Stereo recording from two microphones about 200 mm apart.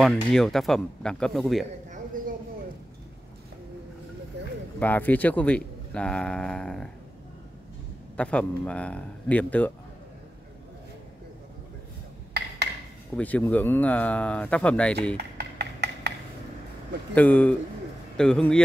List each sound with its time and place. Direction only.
0.0 s speech: centre (ahead or behind)
4.4 s a sound: 60° right (ahead or behind)
4.7 s speech: 10° left (ahead or behind)
8.2 s speech: 5° left (ahead or behind)
13.1 s speech: 10° left (ahead or behind)
15.1 s a sound: 55° right (ahead or behind)
17.1 s speech: 5° left (ahead or behind)